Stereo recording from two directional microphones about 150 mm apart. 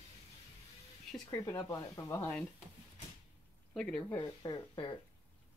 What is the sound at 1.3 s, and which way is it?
Speech, 20° left (ahead or behind).